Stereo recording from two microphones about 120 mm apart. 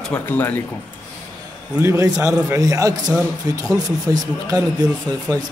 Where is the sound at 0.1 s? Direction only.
15° left (ahead or behind).